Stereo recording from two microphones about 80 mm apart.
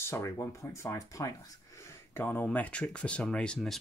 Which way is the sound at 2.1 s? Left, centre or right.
Left.